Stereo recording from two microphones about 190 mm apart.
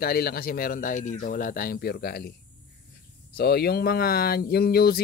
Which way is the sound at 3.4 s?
55° left (ahead or behind).